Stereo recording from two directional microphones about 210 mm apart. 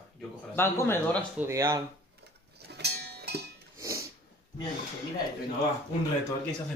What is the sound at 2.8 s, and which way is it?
Music, 50° right (ahead or behind).